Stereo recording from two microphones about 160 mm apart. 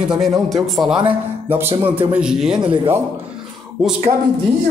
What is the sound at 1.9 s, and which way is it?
Speech, 10° right (ahead or behind).